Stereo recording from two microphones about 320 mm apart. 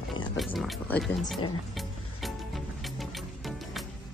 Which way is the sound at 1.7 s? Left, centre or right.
Centre.